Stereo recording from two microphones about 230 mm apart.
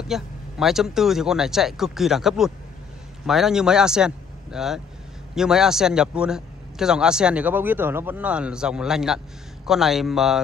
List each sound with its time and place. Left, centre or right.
0.1 s a man's voice: centre